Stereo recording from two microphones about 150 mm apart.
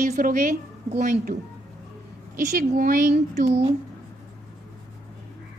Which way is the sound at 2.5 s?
70° right (ahead or behind).